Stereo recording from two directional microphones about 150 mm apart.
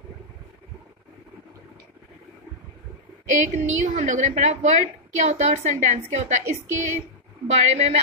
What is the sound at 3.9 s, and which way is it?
A woman's voice, 55° right (ahead or behind).